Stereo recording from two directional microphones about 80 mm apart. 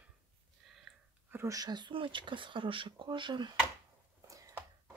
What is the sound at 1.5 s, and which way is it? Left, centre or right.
Speech, right.